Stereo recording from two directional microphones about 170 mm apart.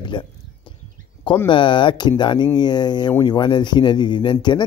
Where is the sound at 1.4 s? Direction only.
30° left (ahead or behind).